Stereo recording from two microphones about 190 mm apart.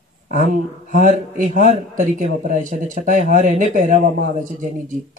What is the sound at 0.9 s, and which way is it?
Speech, 45° right (ahead or behind).